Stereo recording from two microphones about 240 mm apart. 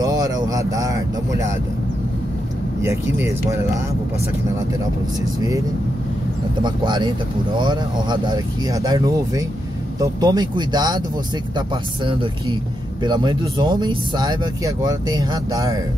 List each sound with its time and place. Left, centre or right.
0.0 s speech: centre
2.8 s speech: centre
6.6 s speech: centre